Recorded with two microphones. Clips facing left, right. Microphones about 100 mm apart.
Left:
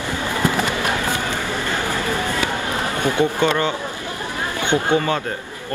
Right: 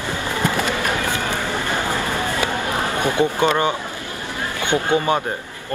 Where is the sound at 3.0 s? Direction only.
15° right (ahead or behind).